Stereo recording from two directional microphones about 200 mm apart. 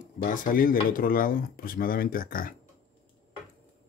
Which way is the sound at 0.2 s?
45° left (ahead or behind).